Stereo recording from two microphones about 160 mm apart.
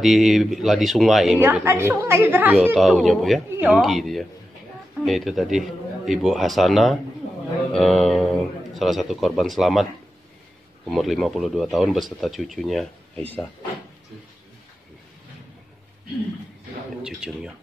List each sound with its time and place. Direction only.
0.0 s speech: centre (ahead or behind)
1.6 s a woman's voice: 15° right (ahead or behind); by 9.8 s centre (ahead or behind)
10.9 s speech: centre (ahead or behind)
17.0 s speech: 5° right (ahead or behind)